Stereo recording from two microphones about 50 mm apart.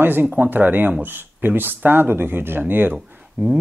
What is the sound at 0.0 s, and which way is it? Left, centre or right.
Speech, right.